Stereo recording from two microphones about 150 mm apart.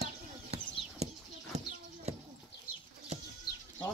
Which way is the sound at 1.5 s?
50° right (ahead or behind).